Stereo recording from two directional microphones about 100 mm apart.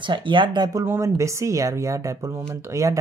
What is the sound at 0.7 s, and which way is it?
Speech, 25° right (ahead or behind).